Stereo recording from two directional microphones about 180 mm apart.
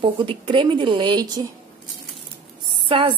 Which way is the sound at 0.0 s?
30° right (ahead or behind).